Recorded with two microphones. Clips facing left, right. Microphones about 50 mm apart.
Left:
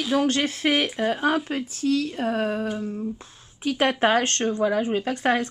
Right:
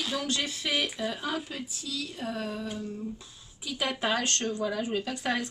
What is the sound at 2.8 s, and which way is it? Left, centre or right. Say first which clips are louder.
Humming: left 7 dB; left.